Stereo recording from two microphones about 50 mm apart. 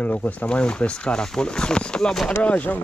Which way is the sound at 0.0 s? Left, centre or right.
Left.